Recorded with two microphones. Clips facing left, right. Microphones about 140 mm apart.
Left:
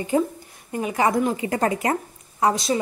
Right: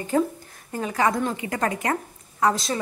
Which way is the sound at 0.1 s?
20° left (ahead or behind).